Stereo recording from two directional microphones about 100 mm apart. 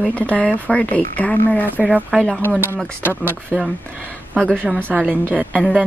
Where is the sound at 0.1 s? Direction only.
15° left (ahead or behind).